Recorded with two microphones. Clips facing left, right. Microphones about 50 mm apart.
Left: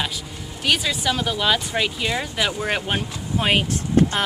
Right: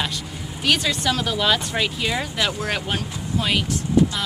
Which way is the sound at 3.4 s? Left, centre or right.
Left.